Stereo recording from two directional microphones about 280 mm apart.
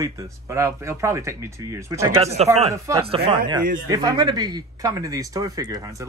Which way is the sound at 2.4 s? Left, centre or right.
Right.